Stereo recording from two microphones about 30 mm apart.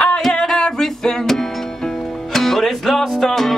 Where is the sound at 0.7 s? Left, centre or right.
Centre.